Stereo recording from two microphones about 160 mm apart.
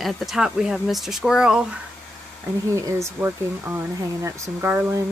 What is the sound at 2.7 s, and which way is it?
Speech, 20° right (ahead or behind).